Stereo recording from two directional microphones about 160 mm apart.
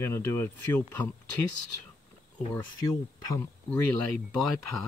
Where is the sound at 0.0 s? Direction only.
15° left (ahead or behind).